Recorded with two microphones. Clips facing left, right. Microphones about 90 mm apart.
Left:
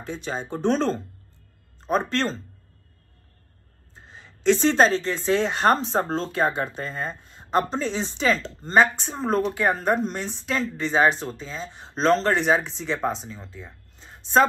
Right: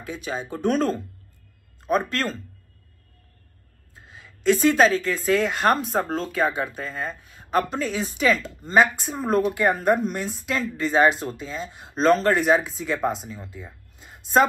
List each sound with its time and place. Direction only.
0.0 s speech: 30° left (ahead or behind)
3.9 s a woman's voice: 30° left (ahead or behind)
8.7 s speech: 5° right (ahead or behind)